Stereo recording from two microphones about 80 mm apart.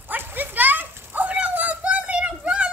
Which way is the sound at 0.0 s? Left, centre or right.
Right.